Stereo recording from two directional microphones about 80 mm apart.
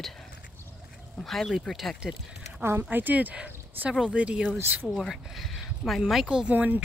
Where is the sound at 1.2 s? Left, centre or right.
Centre.